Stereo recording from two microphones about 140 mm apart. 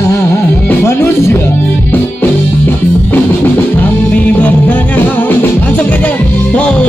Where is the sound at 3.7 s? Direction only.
10° left (ahead or behind).